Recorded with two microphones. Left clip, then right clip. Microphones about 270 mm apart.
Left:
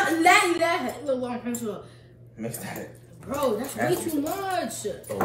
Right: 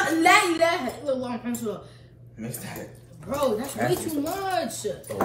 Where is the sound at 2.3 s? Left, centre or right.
Left.